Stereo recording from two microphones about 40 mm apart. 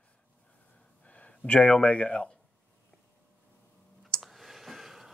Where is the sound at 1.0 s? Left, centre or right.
Left.